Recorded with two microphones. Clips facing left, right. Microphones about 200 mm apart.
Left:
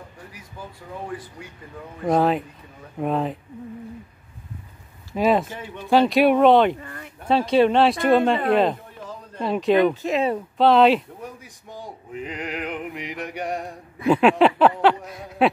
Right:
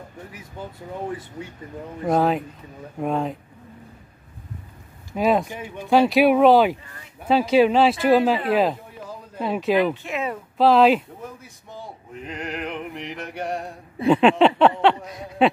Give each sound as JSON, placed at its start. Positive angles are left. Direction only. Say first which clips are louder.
{"t": 0.6, "sound": "speech", "louder": "right 3 dB", "side_deg": -25}
{"t": 2.0, "sound": "male singing", "louder": "left 1 dB", "side_deg": 0}
{"t": 5.1, "sound": "male singing", "louder": "even", "side_deg": 0}
{"t": 5.5, "sound": "speech", "louder": "right 1 dB", "side_deg": -15}
{"t": 5.9, "sound": "male singing", "louder": "even", "side_deg": 0}
{"t": 6.8, "sound": "speech", "louder": "left 8 dB", "side_deg": 55}
{"t": 7.2, "sound": "male singing", "louder": "right 1 dB", "side_deg": -5}
{"t": 8.5, "sound": "speech", "louder": "left 1 dB", "side_deg": -5}
{"t": 10.0, "sound": "speech", "louder": "left 6 dB", "side_deg": 30}
{"t": 10.6, "sound": "male singing", "louder": "even", "side_deg": 0}
{"t": 11.4, "sound": "male singing", "louder": "left 1 dB", "side_deg": 15}
{"t": 13.2, "sound": "a sound", "louder": "left 1 dB", "side_deg": 15}
{"t": 14.0, "sound": "male singing", "louder": "right 1 dB", "side_deg": 0}